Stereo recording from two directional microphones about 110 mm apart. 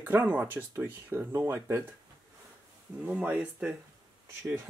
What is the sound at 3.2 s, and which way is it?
Speech, 15° right (ahead or behind).